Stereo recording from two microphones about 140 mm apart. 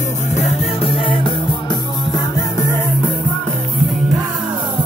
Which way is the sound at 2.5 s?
20° left (ahead or behind).